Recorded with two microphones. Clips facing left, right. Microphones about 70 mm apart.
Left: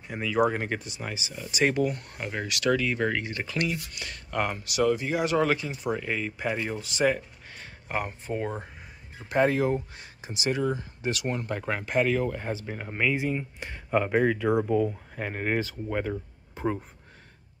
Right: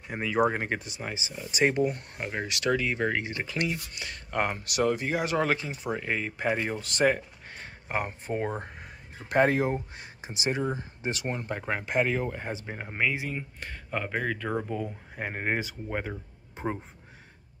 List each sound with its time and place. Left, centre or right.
0.1 s speech: right
4.6 s speech: right
6.8 s speech: right
7.1 s a sound: right
8.3 s speech: right
9.3 s speech: right
11.2 s speech: centre
13.6 s speech: centre
15.1 s speech: centre